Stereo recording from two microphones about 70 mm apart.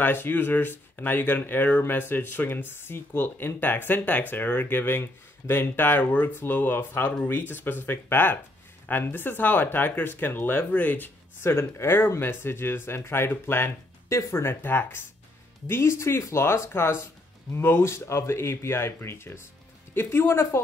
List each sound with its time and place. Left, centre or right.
0.0 s speech: left
11.4 s speech: left